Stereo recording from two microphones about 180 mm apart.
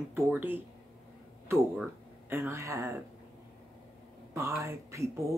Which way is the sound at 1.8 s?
15° right (ahead or behind).